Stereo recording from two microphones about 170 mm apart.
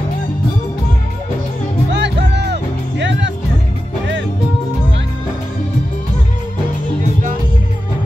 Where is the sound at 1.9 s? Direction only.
90° right.